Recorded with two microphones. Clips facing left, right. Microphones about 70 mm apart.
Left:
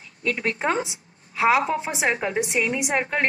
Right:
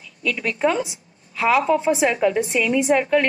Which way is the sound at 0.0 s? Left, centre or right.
Left.